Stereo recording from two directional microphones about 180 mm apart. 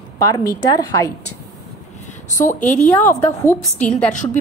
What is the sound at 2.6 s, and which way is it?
Speech, 40° left (ahead or behind).